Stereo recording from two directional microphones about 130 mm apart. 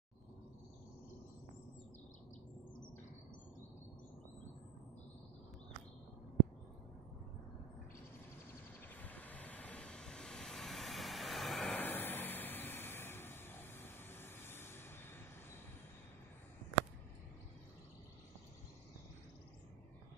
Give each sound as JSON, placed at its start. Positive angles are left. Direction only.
{"t": 8.8, "sound": "vehicle", "side_deg": 10}
{"t": 11.8, "sound": "vehicle", "side_deg": 15}